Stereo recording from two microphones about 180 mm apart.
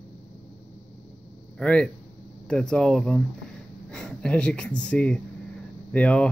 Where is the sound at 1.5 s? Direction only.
5° left (ahead or behind).